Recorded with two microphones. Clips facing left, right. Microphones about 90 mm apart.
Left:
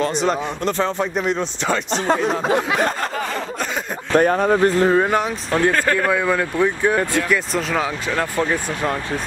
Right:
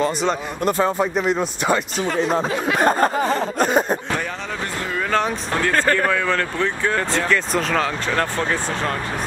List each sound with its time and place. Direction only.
0.0 s speech: centre (ahead or behind)
2.8 s a sound: 40° right (ahead or behind)
4.2 s speech: 50° left (ahead or behind)
5.7 s speech: 5° left (ahead or behind)